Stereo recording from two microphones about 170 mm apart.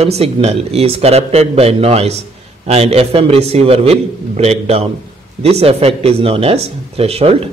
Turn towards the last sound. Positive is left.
turn(degrees=-35)  # may be behind; listen again after turning